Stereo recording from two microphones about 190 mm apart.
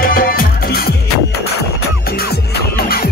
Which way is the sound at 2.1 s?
55° left (ahead or behind).